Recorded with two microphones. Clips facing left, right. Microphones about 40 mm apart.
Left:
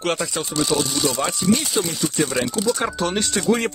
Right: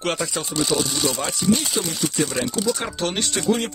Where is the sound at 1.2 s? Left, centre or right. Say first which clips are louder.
Left 1 dB; centre.